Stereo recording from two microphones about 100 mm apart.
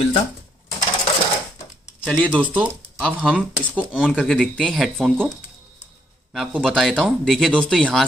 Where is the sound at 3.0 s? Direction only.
10° left (ahead or behind).